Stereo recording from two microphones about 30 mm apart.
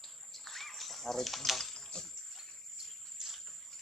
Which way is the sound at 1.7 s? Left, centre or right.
Left.